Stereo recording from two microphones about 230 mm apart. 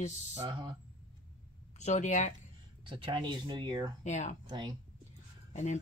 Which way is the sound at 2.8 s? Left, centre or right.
Right.